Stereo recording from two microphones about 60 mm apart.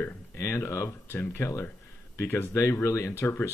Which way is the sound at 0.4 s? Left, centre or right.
Left.